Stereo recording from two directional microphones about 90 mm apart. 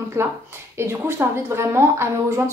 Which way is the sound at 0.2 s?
30° right (ahead or behind).